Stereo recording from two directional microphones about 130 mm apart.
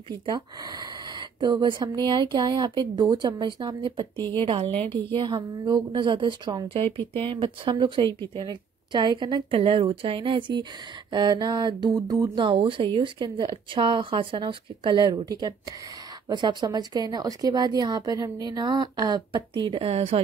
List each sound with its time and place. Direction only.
0.3 s speech: 30° right (ahead or behind); by 20.2 s 50° right (ahead or behind)